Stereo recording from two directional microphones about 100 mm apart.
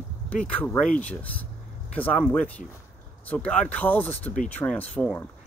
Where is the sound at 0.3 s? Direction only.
15° left (ahead or behind).